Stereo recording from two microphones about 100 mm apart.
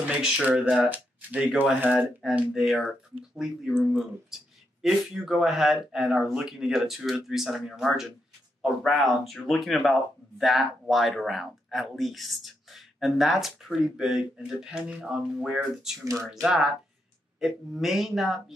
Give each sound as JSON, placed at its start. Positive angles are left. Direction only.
{"t": 0.1, "sound": "speech", "side_deg": -15}
{"t": 2.2, "sound": "speech", "side_deg": -5}
{"t": 16.0, "sound": "speech", "side_deg": -35}
{"t": 16.3, "sound": "speech", "side_deg": -5}